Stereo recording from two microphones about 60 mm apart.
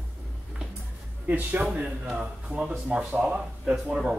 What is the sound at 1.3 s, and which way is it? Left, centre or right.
Speech, right.